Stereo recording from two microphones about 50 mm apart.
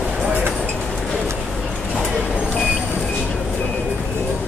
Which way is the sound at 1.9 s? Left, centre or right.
Centre.